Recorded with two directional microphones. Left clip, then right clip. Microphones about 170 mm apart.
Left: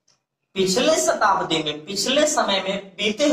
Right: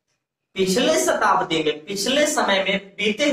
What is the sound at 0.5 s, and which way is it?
A woman's voice, 15° right (ahead or behind).